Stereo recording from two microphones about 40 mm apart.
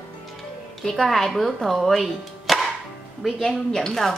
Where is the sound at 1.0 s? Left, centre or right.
Centre.